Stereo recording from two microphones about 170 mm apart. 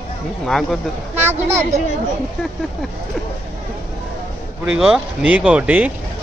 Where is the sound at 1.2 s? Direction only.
15° right (ahead or behind).